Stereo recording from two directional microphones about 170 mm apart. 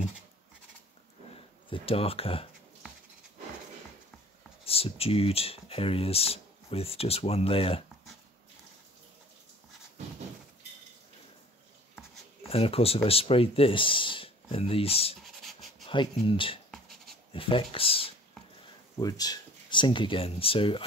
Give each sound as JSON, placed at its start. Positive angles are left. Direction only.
{"t": 1.7, "sound": "speech", "side_deg": 35}
{"t": 4.6, "sound": "speech", "side_deg": 35}
{"t": 12.4, "sound": "speech", "side_deg": 35}
{"t": 15.2, "sound": "writing", "side_deg": 0}
{"t": 15.9, "sound": "speech", "side_deg": 30}
{"t": 16.7, "sound": "writing", "side_deg": 0}
{"t": 17.3, "sound": "speech", "side_deg": 30}
{"t": 18.9, "sound": "speech", "side_deg": 20}